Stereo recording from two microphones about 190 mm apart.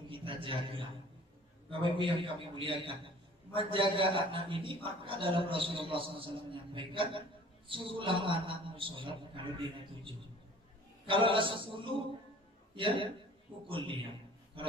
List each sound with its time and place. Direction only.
0.1 s a sound: 25° right (ahead or behind)
1.7 s a man's voice: 25° right (ahead or behind)
11.1 s a man's voice: 25° right (ahead or behind)